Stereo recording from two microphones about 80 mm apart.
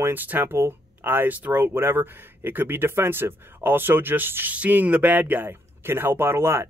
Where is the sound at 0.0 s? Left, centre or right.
Right.